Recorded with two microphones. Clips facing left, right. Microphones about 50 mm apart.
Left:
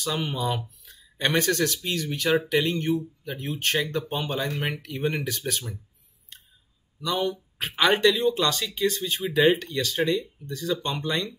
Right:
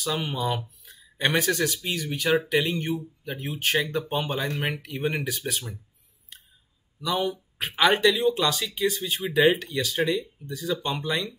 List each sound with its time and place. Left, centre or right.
0.0 s speech: centre
7.0 s speech: centre